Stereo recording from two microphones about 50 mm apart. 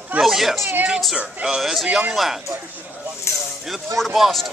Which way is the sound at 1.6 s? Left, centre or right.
Centre.